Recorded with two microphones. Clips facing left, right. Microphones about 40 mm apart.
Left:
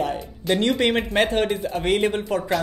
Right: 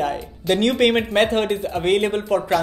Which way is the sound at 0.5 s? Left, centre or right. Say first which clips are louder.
Right 3 dB; right.